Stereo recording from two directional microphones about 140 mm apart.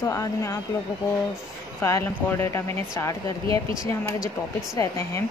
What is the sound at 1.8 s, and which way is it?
Speech, 20° left (ahead or behind).